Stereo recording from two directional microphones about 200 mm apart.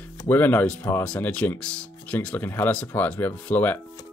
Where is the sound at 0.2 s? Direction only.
10° left (ahead or behind).